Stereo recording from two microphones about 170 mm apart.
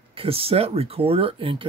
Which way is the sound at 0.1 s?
35° right (ahead or behind).